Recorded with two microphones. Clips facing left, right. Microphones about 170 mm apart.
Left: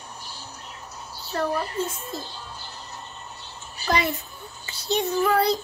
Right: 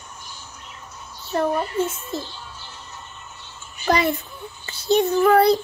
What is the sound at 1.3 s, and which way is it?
Speech, 25° right (ahead or behind).